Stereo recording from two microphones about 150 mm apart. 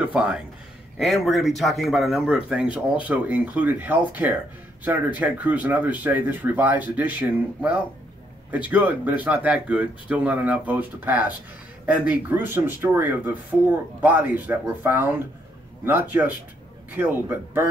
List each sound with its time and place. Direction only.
0.0 s speech: 5° right (ahead or behind)